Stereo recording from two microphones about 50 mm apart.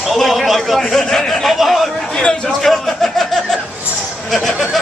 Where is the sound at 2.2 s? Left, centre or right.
Centre.